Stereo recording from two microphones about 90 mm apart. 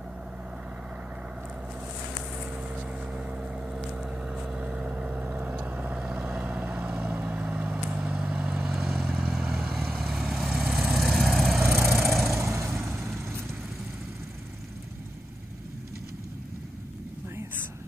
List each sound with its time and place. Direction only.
2.5 s vehicle: 15° right (ahead or behind)
8.7 s vehicle: centre (ahead or behind)
11.6 s vehicle: 25° right (ahead or behind)
12.0 s vehicle: centre (ahead or behind)
12.4 s vehicle: 30° right (ahead or behind)